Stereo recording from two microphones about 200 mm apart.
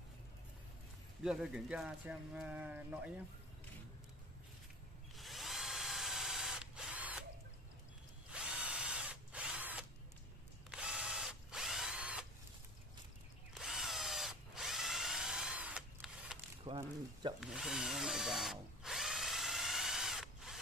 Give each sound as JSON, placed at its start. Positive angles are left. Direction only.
{"t": 1.2, "sound": "speech", "side_deg": -5}
{"t": 5.1, "sound": "drill", "side_deg": 0}
{"t": 8.3, "sound": "drill", "side_deg": -5}
{"t": 13.6, "sound": "drill", "side_deg": 0}
{"t": 16.6, "sound": "mechanisms", "side_deg": -25}
{"t": 17.4, "sound": "drill", "side_deg": 0}